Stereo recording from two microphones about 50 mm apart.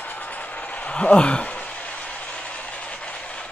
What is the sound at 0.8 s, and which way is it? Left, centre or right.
Speech, left.